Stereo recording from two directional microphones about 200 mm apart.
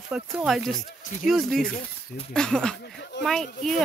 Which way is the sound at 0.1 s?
5° right (ahead or behind).